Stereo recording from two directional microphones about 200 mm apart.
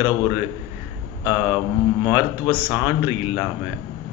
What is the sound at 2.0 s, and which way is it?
Speech, 10° right (ahead or behind).